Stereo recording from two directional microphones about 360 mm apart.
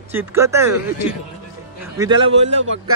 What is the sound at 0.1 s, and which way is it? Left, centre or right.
Speech, centre.